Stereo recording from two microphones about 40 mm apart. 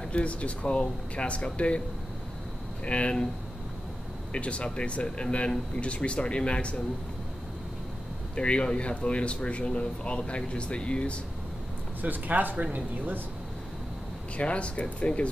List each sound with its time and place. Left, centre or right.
0.1 s speech: left
2.8 s speech: left
4.3 s speech: left
8.4 s speech: left
12.0 s speech: right
14.3 s speech: left